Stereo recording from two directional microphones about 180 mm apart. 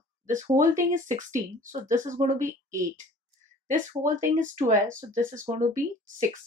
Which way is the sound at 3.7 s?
45° right (ahead or behind).